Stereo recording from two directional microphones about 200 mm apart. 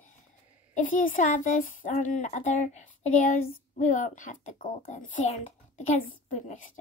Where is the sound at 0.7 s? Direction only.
40° left (ahead or behind).